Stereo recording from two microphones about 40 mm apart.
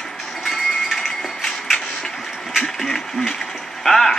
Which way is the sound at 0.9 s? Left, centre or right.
Centre.